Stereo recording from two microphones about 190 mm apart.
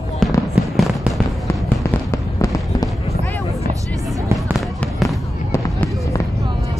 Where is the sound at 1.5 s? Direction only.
15° left (ahead or behind).